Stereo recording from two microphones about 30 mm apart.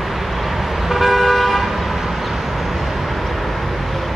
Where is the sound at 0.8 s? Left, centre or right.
Centre.